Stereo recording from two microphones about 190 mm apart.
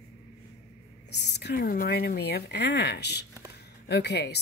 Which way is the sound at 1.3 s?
60° left (ahead or behind).